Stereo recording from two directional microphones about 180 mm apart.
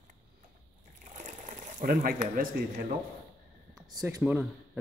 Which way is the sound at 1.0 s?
45° right (ahead or behind).